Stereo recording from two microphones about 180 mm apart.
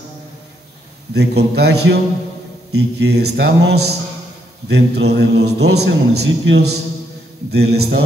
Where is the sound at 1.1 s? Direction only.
65° right (ahead or behind).